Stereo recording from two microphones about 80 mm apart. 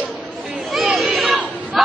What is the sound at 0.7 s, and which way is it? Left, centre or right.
Chatter, centre.